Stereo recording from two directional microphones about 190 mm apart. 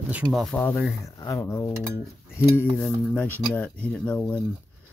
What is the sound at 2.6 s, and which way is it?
Speech, 5° right (ahead or behind).